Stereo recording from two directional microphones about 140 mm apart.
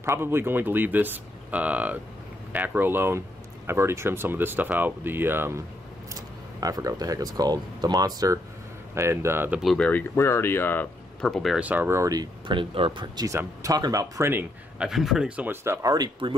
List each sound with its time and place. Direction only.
0.0 s speech: 20° right (ahead or behind)
6.6 s speech: 25° right (ahead or behind)
9.6 s speech: centre (ahead or behind)
9.8 s speech: 15° left (ahead or behind)
11.6 s speech: 10° right (ahead or behind)
14.8 s speech: centre (ahead or behind); by 16.3 s 35° right (ahead or behind)